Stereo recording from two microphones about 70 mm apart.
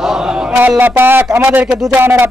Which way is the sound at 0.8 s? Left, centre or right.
Right.